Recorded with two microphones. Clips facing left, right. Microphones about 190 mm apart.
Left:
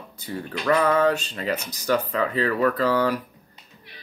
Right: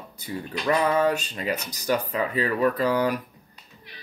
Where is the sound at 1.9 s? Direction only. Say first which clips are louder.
Left 2 dB; 15° right (ahead or behind).